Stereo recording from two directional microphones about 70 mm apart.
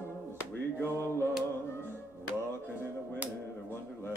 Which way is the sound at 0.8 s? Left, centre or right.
Left.